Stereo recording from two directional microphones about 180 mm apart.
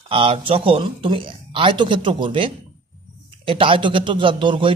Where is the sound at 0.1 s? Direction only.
30° right (ahead or behind).